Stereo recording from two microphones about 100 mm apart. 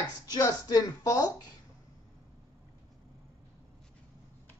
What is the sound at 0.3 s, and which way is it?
Speech, 40° left (ahead or behind).